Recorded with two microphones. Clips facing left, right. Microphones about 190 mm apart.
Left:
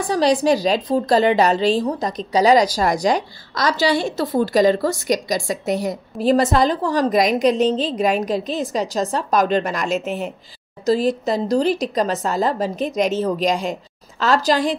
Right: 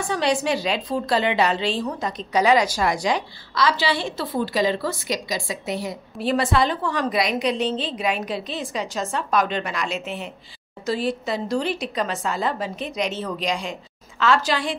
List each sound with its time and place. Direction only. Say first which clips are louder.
0.0 s a woman's voice: left 5 dB; 35° left (ahead or behind)